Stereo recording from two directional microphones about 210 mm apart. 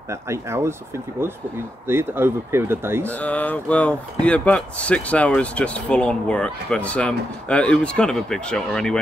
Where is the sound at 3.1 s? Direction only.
5° left (ahead or behind).